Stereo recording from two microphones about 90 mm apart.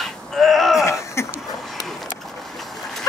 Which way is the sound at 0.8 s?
30° left (ahead or behind).